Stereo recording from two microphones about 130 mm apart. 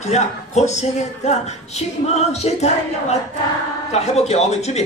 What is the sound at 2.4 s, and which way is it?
Speech, 55° left (ahead or behind).